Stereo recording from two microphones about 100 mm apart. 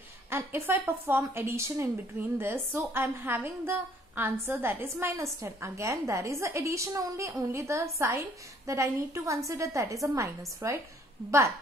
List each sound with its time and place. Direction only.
0.3 s a woman's voice: 25° right (ahead or behind)